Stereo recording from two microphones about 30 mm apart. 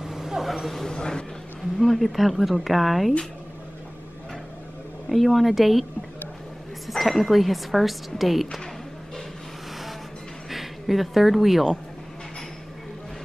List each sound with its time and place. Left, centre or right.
0.0 s a sound: centre
0.8 s speech: left
1.8 s a woman's voice: centre
5.1 s a woman's voice: centre
6.9 s a woman's voice: centre
10.5 s speech: centre